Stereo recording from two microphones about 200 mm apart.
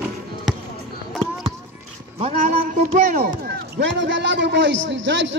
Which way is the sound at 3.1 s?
45° right (ahead or behind).